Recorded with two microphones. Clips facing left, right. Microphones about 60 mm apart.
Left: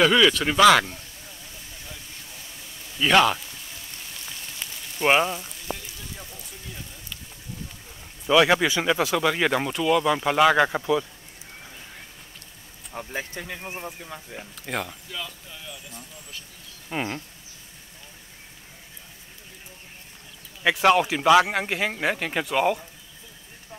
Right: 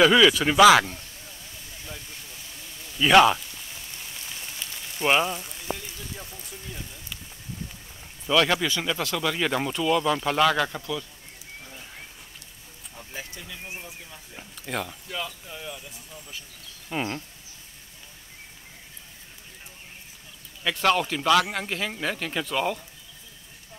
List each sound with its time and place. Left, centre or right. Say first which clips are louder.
0.0 s speech: right 1 dB; centre
3.0 s speech: right 2 dB; centre
5.0 s speech: left 2 dB; centre
6.1 s a sound: right 1 dB; centre
8.3 s speech: left 4 dB; centre
13.2 s speech: left 5 dB; left
14.7 s speech: left 1 dB; centre
15.0 s speech: right 2 dB; centre
15.7 s speech: right 1 dB; centre
16.9 s speech: even; centre
20.7 s speech: left 3 dB; centre